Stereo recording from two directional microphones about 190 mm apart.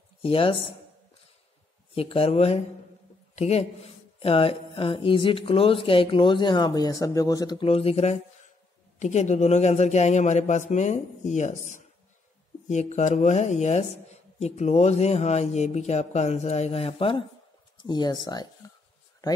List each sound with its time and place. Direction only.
0.2 s speech: 30° left (ahead or behind)
2.0 s speech: 30° left (ahead or behind)
12.6 s speech: 35° left (ahead or behind); by 18.5 s 20° left (ahead or behind)